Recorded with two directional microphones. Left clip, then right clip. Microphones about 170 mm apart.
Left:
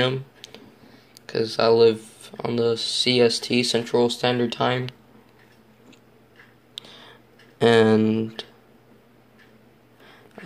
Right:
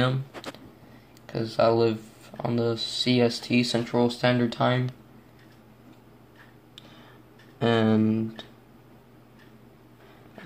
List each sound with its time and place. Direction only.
0.0 s speech: 25° left (ahead or behind)
6.7 s a sound: 40° left (ahead or behind)
7.5 s speech: 40° left (ahead or behind)